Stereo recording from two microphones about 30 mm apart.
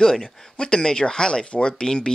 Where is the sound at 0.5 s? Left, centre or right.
Left.